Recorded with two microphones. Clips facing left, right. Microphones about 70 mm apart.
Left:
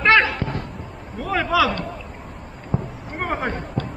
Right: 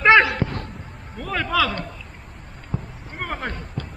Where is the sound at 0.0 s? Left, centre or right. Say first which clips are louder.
Right 2 dB; centre.